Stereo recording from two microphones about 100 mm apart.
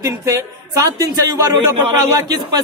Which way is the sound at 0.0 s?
30° right (ahead or behind).